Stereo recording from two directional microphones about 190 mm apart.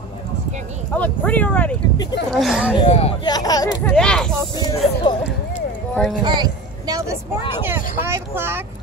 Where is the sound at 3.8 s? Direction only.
5° left (ahead or behind).